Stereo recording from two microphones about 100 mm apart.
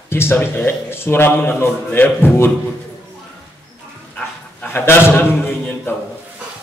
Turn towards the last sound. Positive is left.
turn(degrees=20)  # may be behind; listen again after turning